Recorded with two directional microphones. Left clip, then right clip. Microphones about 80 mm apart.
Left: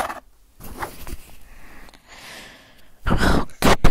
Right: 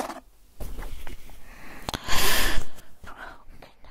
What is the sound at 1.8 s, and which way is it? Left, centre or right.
Sneeze, right.